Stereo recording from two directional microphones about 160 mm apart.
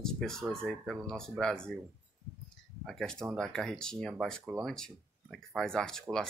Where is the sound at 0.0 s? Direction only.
5° left (ahead or behind).